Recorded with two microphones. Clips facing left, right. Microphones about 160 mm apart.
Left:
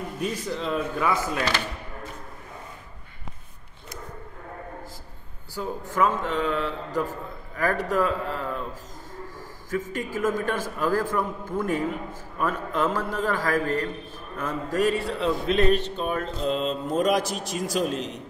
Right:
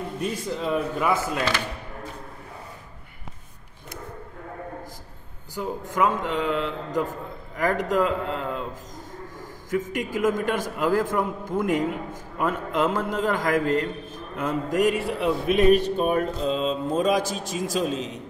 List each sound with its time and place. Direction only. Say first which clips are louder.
0.2 s a man's voice: even; 5° right (ahead or behind)
5.5 s a man's voice: right 1 dB; 15° right (ahead or behind)
9.7 s a man's voice: right 2 dB; 15° right (ahead or behind); by 18.2 s centre (ahead or behind)